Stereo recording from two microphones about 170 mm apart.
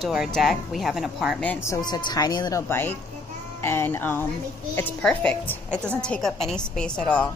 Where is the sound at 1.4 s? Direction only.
10° left (ahead or behind).